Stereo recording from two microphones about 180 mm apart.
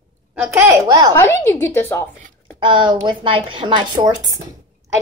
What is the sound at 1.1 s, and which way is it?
A woman's voice, 15° left (ahead or behind).